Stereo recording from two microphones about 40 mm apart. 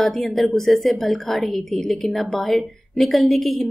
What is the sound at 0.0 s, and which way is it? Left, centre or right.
A woman's voice, centre.